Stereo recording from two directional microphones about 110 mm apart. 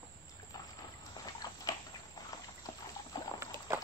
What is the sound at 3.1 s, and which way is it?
Boat, 35° left (ahead or behind).